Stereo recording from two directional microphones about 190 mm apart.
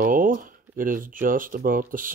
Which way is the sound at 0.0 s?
45° right (ahead or behind).